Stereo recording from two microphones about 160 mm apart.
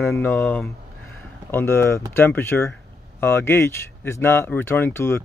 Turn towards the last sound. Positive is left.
turn(degrees=15)  # may be behind; listen again after turning